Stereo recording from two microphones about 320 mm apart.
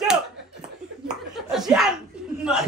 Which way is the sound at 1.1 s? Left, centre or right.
Centre.